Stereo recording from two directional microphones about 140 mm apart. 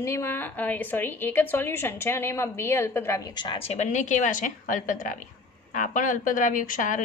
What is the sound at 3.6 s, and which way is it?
A woman's voice, 55° left (ahead or behind).